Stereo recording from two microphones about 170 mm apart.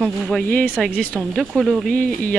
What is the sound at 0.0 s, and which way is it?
Speech, 5° left (ahead or behind).